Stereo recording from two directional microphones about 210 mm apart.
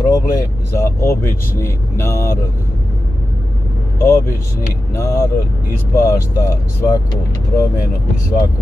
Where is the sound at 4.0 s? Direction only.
10° left (ahead or behind).